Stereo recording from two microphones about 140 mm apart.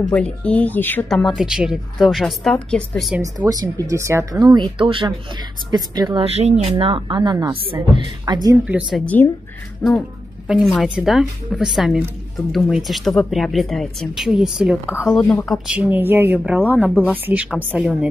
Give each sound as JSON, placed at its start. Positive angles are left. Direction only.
{"t": 0.1, "sound": "speech", "side_deg": 10}
{"t": 1.0, "sound": "a woman's voice", "side_deg": 0}
{"t": 3.2, "sound": "speech", "side_deg": -25}
{"t": 6.2, "sound": "speech", "side_deg": -50}
{"t": 6.8, "sound": "speech", "side_deg": -40}
{"t": 8.6, "sound": "speech", "side_deg": -10}
{"t": 9.0, "sound": "a woman's voice", "side_deg": 10}
{"t": 15.1, "sound": "speech", "side_deg": 10}
{"t": 15.4, "sound": "speech", "side_deg": 0}